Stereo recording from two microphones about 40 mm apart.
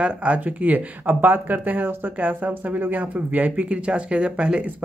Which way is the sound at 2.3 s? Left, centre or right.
Right.